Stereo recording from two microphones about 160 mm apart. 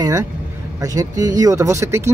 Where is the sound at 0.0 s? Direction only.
25° right (ahead or behind).